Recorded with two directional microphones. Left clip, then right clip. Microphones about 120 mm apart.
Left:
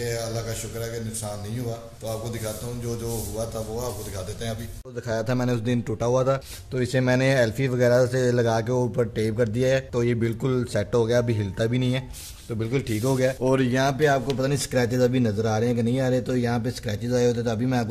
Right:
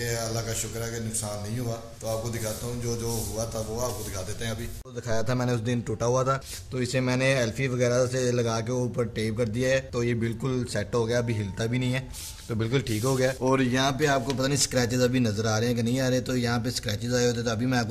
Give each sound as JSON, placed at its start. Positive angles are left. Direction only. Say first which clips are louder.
{"t": 0.0, "sound": "a man's voice", "louder": "left 2 dB", "side_deg": 0}
{"t": 2.0, "sound": "a man's voice", "louder": "even", "side_deg": 0}
{"t": 5.0, "sound": "a man's voice", "louder": "left 2 dB", "side_deg": 10}
{"t": 6.7, "sound": "speech", "louder": "left 5 dB", "side_deg": 25}
{"t": 12.5, "sound": "speech", "louder": "left 1 dB", "side_deg": -10}
{"t": 13.0, "sound": "a man's voice", "louder": "left 3 dB", "side_deg": 10}